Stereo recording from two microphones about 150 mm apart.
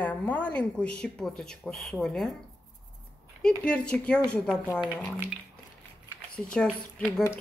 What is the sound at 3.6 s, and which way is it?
A woman's voice, 5° left (ahead or behind).